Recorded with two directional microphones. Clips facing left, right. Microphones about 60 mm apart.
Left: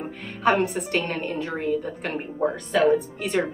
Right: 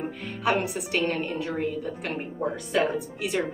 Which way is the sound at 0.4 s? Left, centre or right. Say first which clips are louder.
Left 4 dB; centre.